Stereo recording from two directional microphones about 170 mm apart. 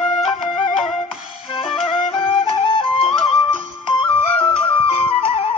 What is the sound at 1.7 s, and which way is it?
Flute, 35° left (ahead or behind).